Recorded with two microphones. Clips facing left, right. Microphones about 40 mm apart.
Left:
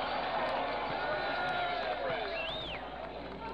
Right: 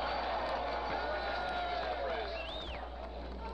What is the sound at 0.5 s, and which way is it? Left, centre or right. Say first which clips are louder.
Crowd: left 2 dB; left.